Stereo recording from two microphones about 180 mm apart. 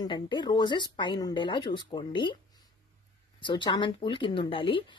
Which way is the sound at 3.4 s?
25° left (ahead or behind).